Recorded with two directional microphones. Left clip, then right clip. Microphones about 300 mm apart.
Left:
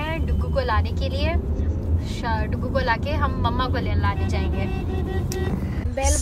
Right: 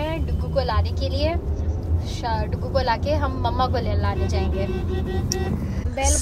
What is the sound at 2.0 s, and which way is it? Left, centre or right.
Speech, centre.